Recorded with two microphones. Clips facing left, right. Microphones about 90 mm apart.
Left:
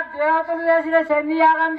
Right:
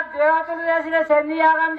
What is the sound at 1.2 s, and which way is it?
Speech, 35° right (ahead or behind).